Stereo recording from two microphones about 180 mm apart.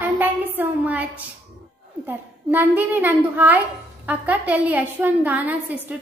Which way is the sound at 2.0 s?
10° right (ahead or behind).